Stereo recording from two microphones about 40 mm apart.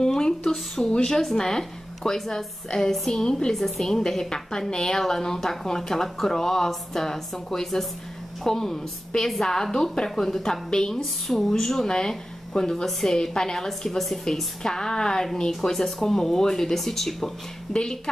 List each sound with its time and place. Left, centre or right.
0.0 s a sound: centre
0.9 s speech: centre
3.5 s speech: centre
10.4 s speech: centre
11.0 s speech: centre
13.7 s a woman's voice: centre
14.6 s speech: centre